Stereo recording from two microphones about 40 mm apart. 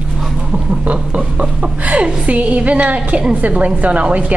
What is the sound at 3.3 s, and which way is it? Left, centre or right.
Speech, right.